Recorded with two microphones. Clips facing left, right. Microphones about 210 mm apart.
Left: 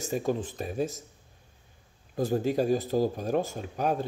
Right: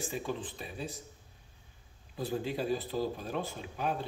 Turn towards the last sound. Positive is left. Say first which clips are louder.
# left 6 dB
turn(degrees=45)  # may be behind; listen again after turning